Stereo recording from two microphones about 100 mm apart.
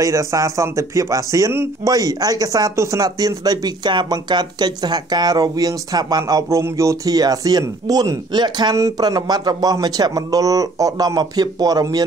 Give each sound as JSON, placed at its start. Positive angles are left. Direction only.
{"t": 0.0, "sound": "speech", "side_deg": -30}
{"t": 8.7, "sound": "speech", "side_deg": -35}